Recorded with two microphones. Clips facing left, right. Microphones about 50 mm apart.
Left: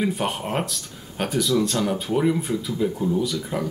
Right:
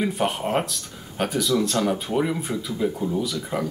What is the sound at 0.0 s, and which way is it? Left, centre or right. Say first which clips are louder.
Speech: right 1 dB; centre.